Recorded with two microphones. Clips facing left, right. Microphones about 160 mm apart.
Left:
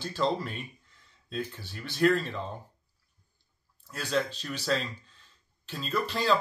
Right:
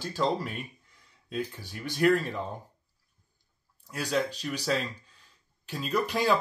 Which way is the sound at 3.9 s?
10° right (ahead or behind).